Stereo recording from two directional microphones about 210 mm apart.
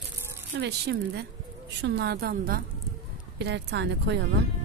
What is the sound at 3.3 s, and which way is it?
Speech, 55° right (ahead or behind).